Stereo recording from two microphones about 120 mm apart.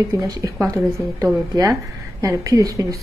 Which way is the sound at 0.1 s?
30° right (ahead or behind).